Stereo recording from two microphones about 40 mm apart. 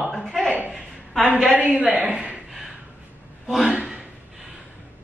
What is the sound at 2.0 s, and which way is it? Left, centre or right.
Speech, right.